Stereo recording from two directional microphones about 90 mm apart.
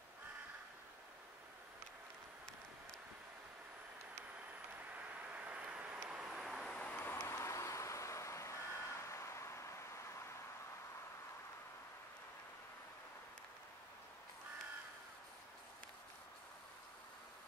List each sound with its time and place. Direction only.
4.9 s vehicle: 15° right (ahead or behind)
6.5 s vehicle: 5° left (ahead or behind)
7.0 s vehicle: 25° left (ahead or behind)